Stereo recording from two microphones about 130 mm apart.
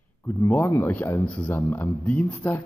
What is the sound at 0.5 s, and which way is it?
Speech, 15° left (ahead or behind).